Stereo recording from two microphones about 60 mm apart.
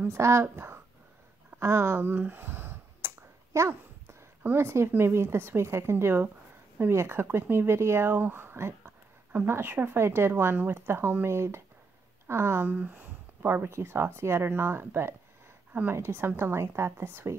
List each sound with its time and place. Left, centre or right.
0.1 s speech: right
1.6 s a sound: right
4.6 s speech: right
12.6 s speech: right
15.9 s speech: right